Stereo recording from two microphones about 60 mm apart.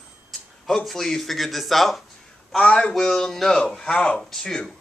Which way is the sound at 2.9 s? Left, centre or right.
Centre.